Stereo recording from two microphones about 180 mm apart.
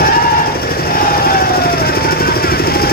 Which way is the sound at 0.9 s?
55° left (ahead or behind).